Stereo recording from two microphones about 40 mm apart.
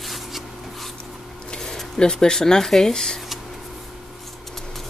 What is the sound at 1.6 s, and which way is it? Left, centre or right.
Speech, centre.